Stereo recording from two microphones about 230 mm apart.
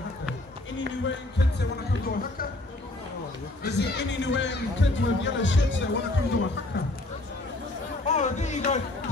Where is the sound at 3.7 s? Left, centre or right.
Left.